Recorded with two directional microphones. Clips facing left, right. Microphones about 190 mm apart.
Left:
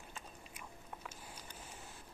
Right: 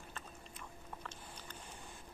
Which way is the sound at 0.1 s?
10° left (ahead or behind).